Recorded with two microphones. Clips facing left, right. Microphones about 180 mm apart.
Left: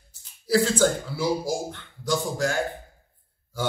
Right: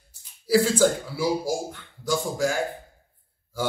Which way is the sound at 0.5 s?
10° right (ahead or behind).